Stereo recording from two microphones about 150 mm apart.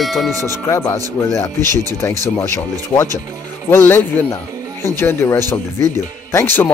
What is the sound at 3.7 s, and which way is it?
Speech, 15° left (ahead or behind).